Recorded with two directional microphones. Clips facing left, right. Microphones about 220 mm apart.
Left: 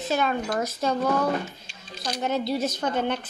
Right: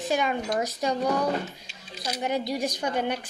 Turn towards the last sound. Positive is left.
turn(degrees=-10)  # may be behind; listen again after turning